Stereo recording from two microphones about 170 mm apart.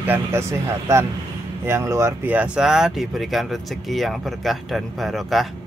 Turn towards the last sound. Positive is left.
turn(degrees=0)  # may be behind; listen again after turning